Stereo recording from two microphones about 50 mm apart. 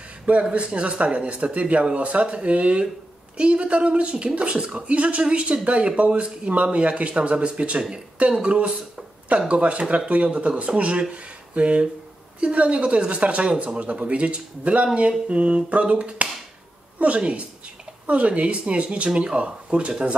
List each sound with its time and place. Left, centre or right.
0.3 s speech: right